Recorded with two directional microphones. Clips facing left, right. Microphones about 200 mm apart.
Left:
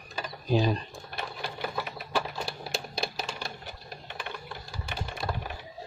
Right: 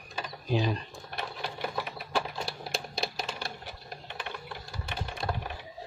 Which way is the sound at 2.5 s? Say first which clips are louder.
Left 1 dB; centre (ahead or behind).